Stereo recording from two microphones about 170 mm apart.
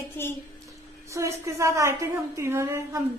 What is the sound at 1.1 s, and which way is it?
A woman's voice, 20° right (ahead or behind).